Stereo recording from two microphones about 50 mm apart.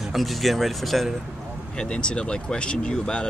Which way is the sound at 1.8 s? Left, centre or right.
Centre.